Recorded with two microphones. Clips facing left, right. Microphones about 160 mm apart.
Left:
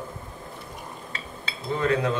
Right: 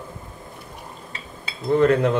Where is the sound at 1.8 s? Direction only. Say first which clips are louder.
Right 6 dB; 60° right (ahead or behind).